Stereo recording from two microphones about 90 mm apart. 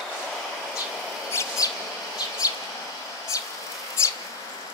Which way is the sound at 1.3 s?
35° left (ahead or behind).